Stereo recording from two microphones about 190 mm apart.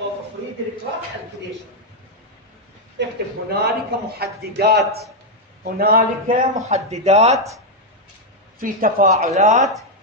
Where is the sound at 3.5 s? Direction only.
55° right (ahead or behind).